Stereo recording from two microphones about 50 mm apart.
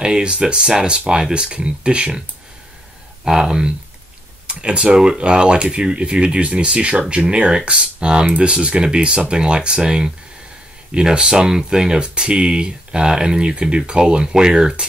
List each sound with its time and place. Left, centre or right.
0.0 s speech: centre
3.3 s speech: centre
7.5 s speech: centre